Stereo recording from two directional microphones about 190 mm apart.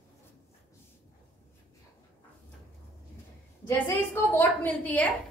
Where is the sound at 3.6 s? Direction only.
15° left (ahead or behind).